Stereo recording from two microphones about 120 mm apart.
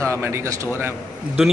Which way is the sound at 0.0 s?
20° right (ahead or behind).